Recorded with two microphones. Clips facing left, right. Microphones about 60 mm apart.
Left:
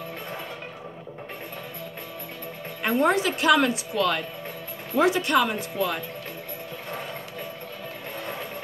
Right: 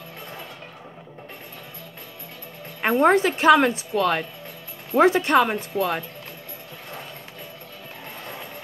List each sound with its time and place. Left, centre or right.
2.8 s a woman's voice: right